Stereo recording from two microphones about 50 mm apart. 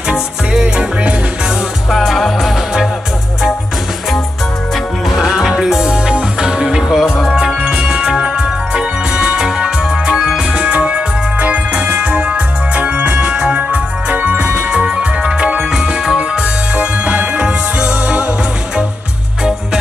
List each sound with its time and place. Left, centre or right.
0.1 s music: centre
1.9 s music: centre
5.2 s music: centre
10.6 s organ: right
14.7 s music: centre